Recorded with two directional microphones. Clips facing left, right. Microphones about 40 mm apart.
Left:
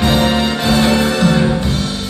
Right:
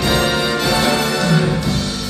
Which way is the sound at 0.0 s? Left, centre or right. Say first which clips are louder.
Left 3 dB; left.